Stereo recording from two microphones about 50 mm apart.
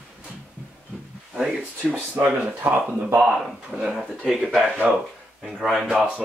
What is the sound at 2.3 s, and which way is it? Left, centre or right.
Speech, right.